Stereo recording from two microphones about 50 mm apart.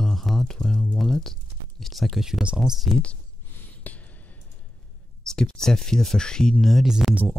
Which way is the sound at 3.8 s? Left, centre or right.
Left.